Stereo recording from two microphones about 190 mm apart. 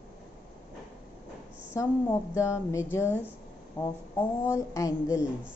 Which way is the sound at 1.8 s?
15° left (ahead or behind).